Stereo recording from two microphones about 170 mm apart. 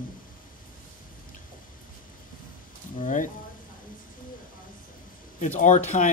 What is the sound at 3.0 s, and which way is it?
Speech, 50° left (ahead or behind).